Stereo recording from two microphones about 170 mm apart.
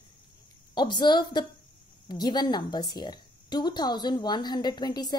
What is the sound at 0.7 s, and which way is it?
Child singing, 25° left (ahead or behind).